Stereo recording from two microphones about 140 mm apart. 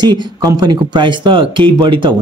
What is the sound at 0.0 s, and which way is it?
Speech, 30° right (ahead or behind).